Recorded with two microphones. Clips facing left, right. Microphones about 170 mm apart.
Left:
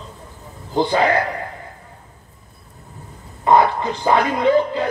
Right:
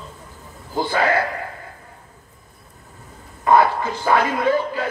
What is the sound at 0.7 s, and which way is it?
Speech, 20° left (ahead or behind).